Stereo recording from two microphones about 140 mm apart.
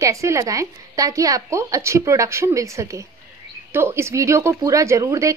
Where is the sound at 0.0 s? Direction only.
20° right (ahead or behind).